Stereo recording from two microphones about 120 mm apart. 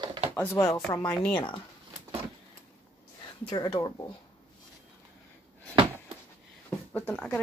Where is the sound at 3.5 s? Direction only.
35° left (ahead or behind).